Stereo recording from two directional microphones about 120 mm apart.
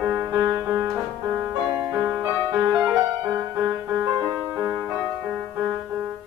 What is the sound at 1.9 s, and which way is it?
Music, 20° right (ahead or behind).